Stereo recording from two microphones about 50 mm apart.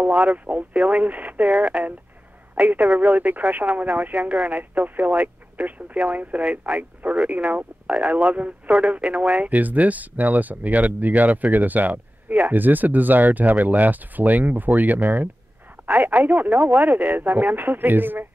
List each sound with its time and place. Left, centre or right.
0.0 s speech: right